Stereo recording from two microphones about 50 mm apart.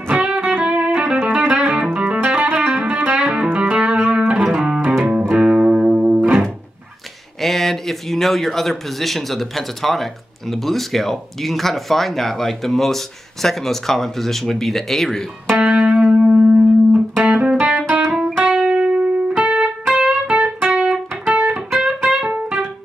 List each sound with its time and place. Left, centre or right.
0.1 s music: right
1.3 s music: right
4.6 s music: centre
7.4 s speech: centre
15.5 s music: right
16.2 s music: centre
18.1 s music: centre
18.4 s music: centre